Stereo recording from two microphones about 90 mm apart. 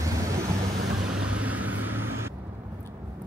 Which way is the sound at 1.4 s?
20° right (ahead or behind).